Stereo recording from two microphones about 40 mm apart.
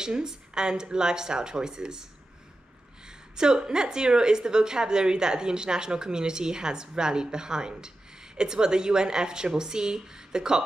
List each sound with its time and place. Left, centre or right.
0.0 s speech: centre
3.1 s a woman's voice: centre